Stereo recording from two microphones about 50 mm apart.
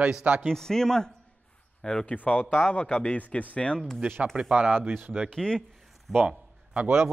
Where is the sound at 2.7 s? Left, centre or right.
Left.